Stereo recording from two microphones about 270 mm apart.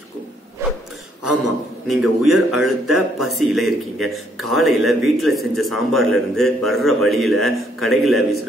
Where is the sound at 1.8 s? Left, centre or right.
Centre.